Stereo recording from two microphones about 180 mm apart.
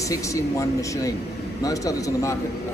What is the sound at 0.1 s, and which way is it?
A man's voice, 15° left (ahead or behind).